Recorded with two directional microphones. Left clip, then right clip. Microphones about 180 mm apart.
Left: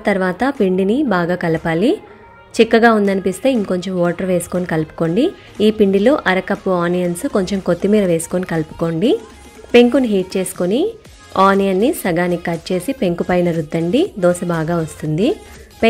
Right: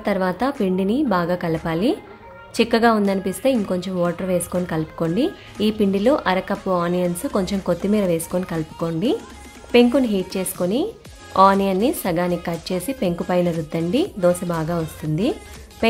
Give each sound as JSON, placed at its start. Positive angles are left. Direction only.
{"t": 0.0, "sound": "a woman's voice", "side_deg": 20}